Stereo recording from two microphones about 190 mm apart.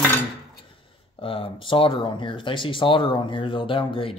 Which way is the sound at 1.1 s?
30° left (ahead or behind).